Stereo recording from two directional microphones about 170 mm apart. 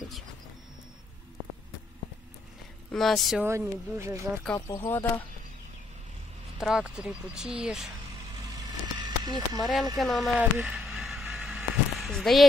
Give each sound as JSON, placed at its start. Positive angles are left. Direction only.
{"t": 2.9, "sound": "speech", "side_deg": 0}
{"t": 3.4, "sound": "speech", "side_deg": -15}
{"t": 4.6, "sound": "speech", "side_deg": 20}
{"t": 6.6, "sound": "speech", "side_deg": -5}
{"t": 8.9, "sound": "a sound", "side_deg": -25}
{"t": 9.9, "sound": "a sound", "side_deg": 0}